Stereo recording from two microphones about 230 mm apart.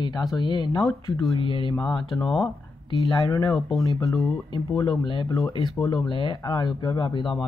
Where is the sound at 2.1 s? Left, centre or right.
Centre.